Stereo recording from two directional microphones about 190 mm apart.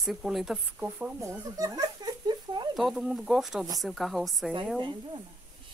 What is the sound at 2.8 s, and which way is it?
Speech, 5° right (ahead or behind).